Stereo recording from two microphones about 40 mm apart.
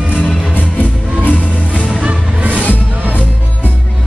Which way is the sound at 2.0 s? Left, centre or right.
Right.